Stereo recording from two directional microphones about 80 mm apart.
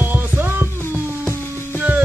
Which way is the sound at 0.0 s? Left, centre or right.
Right.